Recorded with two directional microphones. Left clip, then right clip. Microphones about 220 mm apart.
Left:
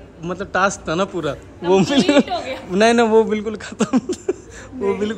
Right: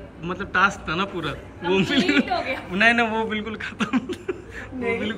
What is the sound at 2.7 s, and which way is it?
A man's voice, 15° left (ahead or behind).